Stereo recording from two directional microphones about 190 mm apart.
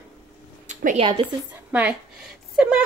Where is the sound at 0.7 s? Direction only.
40° right (ahead or behind).